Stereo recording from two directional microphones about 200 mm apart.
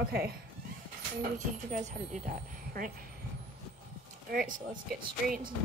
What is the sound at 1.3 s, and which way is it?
Speech, 40° right (ahead or behind).